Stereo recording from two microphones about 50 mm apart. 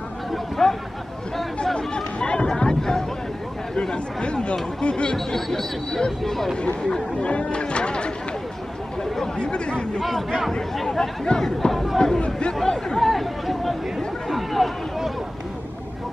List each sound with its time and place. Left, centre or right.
0.3 s speech: centre; by 5.1 s left
5.1 s speech: centre
6.5 s speech: centre
9.2 s speech: centre
10.0 s speech: centre
12.6 s speech: centre
13.0 s chatter: centre